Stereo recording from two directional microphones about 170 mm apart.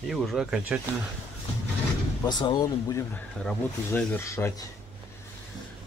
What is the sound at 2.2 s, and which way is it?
Speech, 25° left (ahead or behind).